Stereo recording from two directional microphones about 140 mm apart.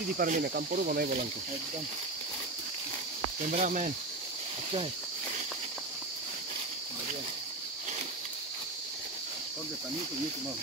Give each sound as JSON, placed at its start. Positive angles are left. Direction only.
{"t": 0.2, "sound": "speech", "side_deg": -90}
{"t": 3.4, "sound": "speech", "side_deg": -60}